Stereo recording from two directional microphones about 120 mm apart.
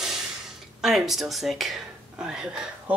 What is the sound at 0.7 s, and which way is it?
Speech, 5° right (ahead or behind).